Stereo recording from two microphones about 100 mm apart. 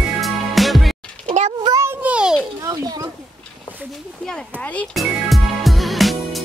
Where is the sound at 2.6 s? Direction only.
40° right (ahead or behind).